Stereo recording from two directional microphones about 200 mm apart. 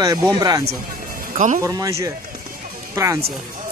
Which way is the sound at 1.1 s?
40° right (ahead or behind).